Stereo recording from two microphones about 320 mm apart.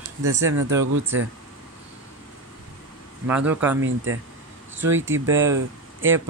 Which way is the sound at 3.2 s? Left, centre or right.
Centre.